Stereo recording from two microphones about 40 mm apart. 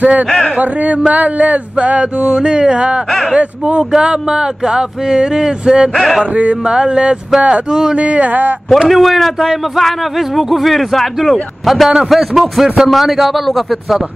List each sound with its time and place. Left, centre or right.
0.0 s a sound: right
2.3 s speech: right
3.1 s a man's voice: centre
3.3 s speech: right
5.9 s a man's voice: centre
6.3 s a sound: right
6.6 s speech: right
7.7 s speech: centre
8.0 s a sound: right
8.8 s a man's voice: centre